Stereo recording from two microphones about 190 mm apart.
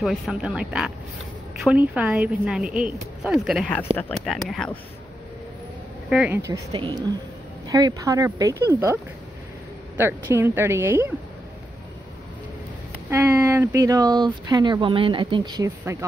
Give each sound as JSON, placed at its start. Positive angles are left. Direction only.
{"t": 0.0, "sound": "a woman's voice", "side_deg": 0}
{"t": 6.0, "sound": "speech", "side_deg": -5}
{"t": 9.9, "sound": "speech", "side_deg": -10}
{"t": 13.1, "sound": "speech", "side_deg": -15}